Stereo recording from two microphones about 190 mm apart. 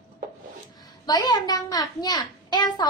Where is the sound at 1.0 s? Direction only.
20° left (ahead or behind).